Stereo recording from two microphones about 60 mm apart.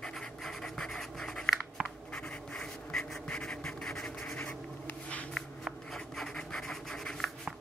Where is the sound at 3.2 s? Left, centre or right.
Centre.